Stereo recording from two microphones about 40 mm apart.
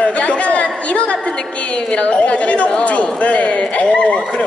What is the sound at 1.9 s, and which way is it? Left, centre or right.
A woman's voice, left.